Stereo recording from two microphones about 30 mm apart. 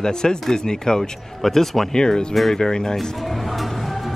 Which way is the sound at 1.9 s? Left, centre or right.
Left.